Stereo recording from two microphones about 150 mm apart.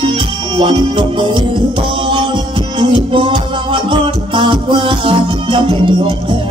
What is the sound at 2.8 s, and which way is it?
Music, 35° right (ahead or behind).